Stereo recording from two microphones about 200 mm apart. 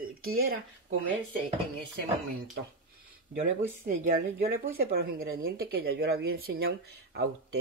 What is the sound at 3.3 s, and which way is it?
Speech, 40° right (ahead or behind).